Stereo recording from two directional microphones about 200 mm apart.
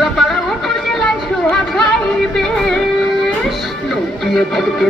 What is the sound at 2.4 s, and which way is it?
Music, centre (ahead or behind).